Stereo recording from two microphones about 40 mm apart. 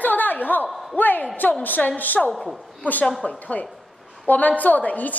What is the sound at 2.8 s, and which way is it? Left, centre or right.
A woman's voice, left.